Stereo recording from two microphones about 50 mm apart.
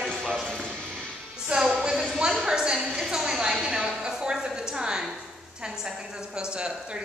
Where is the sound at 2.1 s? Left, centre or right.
Centre.